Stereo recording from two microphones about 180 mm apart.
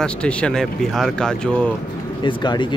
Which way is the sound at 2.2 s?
25° left (ahead or behind).